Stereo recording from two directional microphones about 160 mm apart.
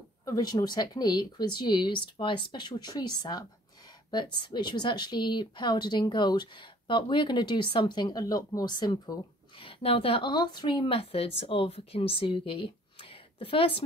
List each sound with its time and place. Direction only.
0.2 s speech: 25° left (ahead or behind)